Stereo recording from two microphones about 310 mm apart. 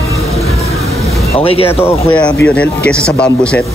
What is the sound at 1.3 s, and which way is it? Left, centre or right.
Speech, centre.